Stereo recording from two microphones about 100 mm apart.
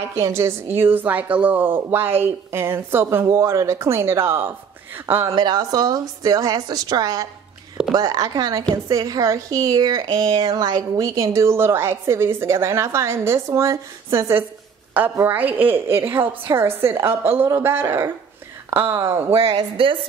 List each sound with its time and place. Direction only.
0.1 s a woman's voice: 25° right (ahead or behind)
5.3 s a woman's voice: 45° right (ahead or behind); by 19.5 s 25° right (ahead or behind)
19.8 s speech: 60° right (ahead or behind)